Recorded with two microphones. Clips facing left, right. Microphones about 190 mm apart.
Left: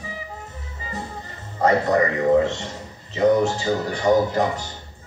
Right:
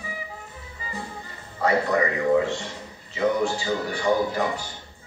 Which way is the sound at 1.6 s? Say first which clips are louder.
Left 4 dB; 45° left (ahead or behind).